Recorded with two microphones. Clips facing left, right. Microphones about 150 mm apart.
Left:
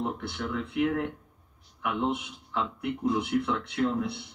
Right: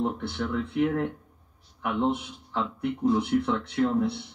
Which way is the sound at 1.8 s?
35° right (ahead or behind).